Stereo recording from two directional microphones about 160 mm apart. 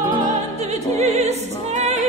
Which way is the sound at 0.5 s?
40° right (ahead or behind).